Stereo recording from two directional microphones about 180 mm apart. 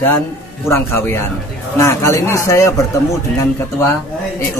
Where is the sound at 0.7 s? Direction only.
15° left (ahead or behind).